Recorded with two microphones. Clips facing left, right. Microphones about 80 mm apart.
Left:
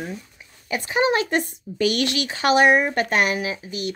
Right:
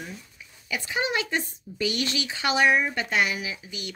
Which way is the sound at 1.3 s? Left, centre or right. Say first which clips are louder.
Left 6 dB; left.